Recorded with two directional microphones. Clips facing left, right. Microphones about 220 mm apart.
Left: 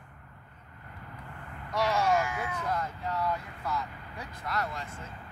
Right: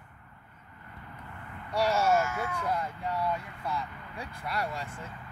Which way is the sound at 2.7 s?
10° right (ahead or behind).